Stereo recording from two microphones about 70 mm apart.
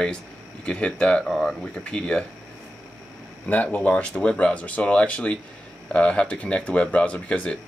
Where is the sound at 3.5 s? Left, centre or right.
Left.